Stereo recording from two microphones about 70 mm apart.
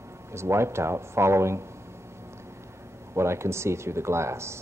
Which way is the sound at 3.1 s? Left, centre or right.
Right.